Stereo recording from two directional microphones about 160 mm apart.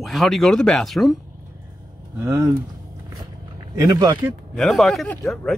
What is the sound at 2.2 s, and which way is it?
Speech, 15° right (ahead or behind).